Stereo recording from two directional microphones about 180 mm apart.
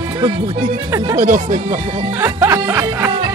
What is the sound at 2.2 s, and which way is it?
Music, 15° right (ahead or behind).